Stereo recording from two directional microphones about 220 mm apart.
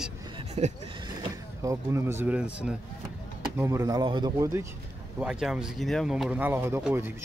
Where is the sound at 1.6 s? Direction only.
10° right (ahead or behind).